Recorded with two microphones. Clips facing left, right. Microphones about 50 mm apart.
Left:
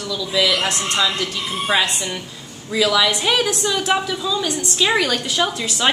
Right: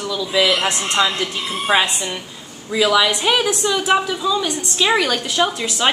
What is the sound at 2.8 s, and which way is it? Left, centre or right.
A woman's voice, centre.